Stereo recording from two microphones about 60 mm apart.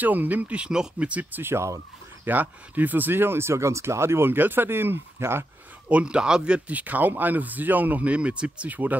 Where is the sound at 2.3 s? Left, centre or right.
Right.